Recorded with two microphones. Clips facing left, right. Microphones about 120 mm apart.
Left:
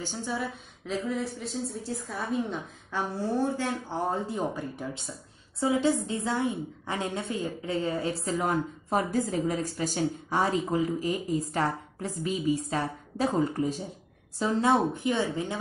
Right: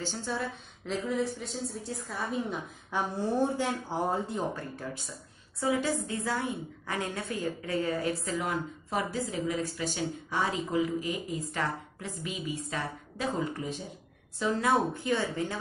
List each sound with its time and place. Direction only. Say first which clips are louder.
0.0 s a woman's voice: left 1 dB; 15° left (ahead or behind)
0.8 s a woman's voice: even; centre (ahead or behind)
2.9 s speech: even; 15° right (ahead or behind)
4.6 s a woman's voice: left 3 dB; 15° left (ahead or behind); by 13.8 s 40° left (ahead or behind)
14.4 s speech: left 3 dB; 25° left (ahead or behind)